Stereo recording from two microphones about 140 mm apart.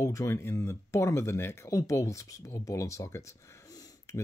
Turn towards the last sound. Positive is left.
turn(degrees=25)  # may be behind; listen again after turning